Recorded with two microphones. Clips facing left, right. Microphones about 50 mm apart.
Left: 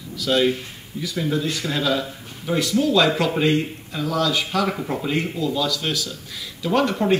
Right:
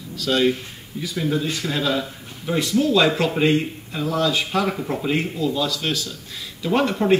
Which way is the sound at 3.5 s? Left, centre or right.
Centre.